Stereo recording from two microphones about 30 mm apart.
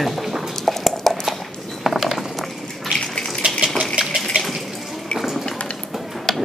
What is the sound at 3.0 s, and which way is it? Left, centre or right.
Bathtub, left.